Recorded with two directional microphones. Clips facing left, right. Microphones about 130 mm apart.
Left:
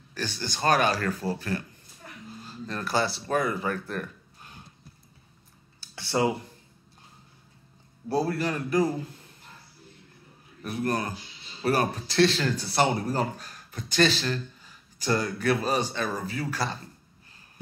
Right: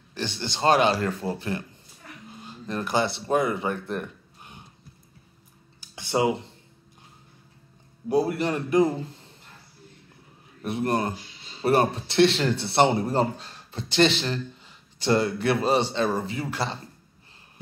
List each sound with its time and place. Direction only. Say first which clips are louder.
0.1 s speech: right 2 dB; 20° right (ahead or behind)
5.8 s a sound: right 2 dB; 20° right (ahead or behind)
8.1 s speech: right 3 dB; 20° right (ahead or behind)
10.6 s speech: right 3 dB; 25° right (ahead or behind)